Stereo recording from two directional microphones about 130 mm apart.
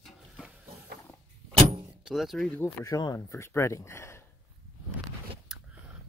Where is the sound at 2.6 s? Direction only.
30° left (ahead or behind).